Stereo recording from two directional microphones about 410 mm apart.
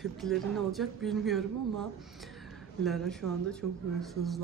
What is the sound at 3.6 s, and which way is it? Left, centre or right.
Speech, right.